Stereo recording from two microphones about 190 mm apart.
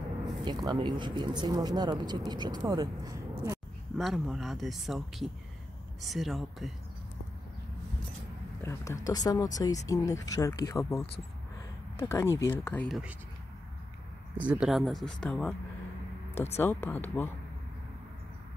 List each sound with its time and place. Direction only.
0.5 s speech: 20° right (ahead or behind)
4.0 s speech: centre (ahead or behind)
8.6 s speech: 15° left (ahead or behind)
14.3 s speech: 5° right (ahead or behind)
16.5 s speech: 10° left (ahead or behind)